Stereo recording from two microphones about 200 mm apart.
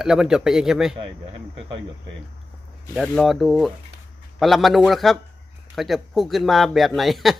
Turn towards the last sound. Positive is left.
turn(degrees=0)  # may be behind; listen again after turning